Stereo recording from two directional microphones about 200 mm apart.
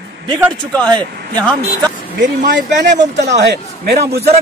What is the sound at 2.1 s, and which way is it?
A man's voice, 60° right (ahead or behind).